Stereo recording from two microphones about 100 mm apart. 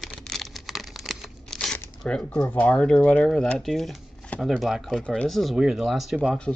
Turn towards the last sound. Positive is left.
turn(degrees=-5)  # may be behind; listen again after turning